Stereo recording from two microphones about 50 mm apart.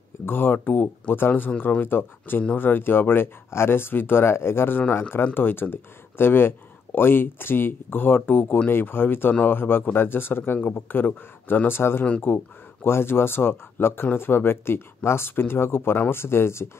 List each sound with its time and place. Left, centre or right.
0.2 s speech: left